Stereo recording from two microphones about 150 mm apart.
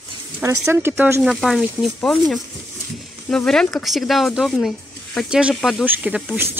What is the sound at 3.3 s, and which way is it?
Speech, 5° left (ahead or behind).